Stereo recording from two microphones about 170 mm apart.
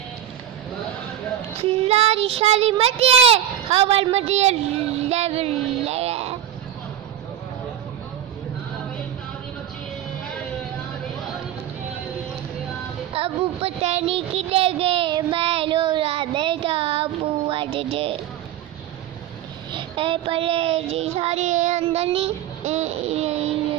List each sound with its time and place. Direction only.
1.6 s child singing: 35° right (ahead or behind)
13.1 s child singing: 35° right (ahead or behind)
19.7 s child singing: 30° right (ahead or behind)